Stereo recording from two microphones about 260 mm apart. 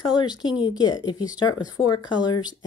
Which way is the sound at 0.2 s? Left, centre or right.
Centre.